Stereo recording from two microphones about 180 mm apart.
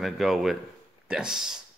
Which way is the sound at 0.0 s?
Centre (ahead or behind).